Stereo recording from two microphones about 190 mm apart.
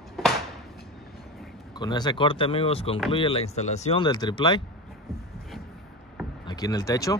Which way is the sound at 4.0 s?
20° left (ahead or behind).